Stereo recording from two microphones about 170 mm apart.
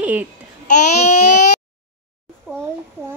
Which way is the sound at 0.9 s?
45° left (ahead or behind).